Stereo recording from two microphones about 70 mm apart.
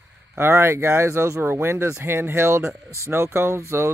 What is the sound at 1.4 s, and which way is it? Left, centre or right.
Speech, right.